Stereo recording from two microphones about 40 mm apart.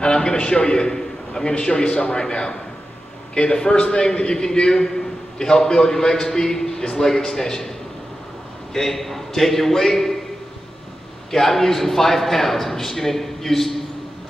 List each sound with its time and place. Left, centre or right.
0.0 s a man's voice: centre
1.5 s a man's voice: left
8.7 s a man's voice: centre
11.3 s a man's voice: centre